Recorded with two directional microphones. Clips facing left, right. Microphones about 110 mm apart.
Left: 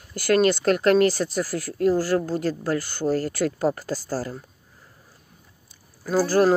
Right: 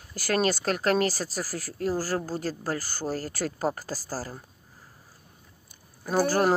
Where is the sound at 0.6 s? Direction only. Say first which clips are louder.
Left 7 dB; 35° right (ahead or behind).